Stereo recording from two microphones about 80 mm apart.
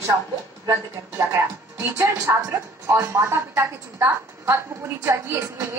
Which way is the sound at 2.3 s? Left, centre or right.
Right.